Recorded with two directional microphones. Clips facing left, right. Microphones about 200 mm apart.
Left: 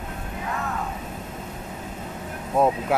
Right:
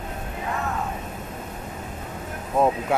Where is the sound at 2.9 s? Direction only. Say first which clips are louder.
Even; centre (ahead or behind).